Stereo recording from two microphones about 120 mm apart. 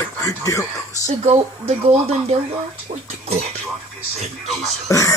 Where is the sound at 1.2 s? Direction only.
55° right (ahead or behind).